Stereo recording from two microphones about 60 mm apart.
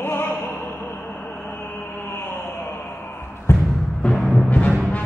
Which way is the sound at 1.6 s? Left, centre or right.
Left.